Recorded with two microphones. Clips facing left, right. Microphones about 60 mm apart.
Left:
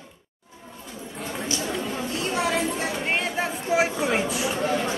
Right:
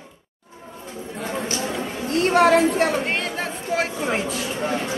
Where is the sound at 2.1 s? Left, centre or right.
Right.